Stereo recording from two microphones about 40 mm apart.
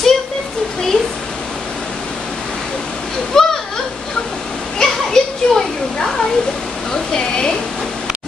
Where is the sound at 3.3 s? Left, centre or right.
Centre.